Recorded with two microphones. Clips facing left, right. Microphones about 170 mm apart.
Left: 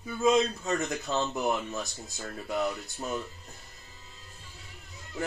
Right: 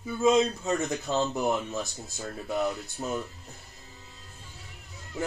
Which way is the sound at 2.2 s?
15° right (ahead or behind).